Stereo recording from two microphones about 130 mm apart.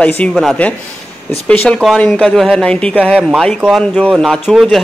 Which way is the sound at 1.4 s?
10° left (ahead or behind).